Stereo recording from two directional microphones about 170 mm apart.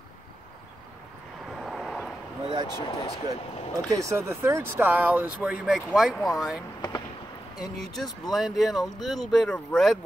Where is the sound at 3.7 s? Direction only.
20° right (ahead or behind); by 6.6 s centre (ahead or behind).